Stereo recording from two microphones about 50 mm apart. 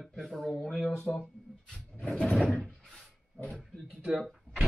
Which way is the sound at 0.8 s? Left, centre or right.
Centre.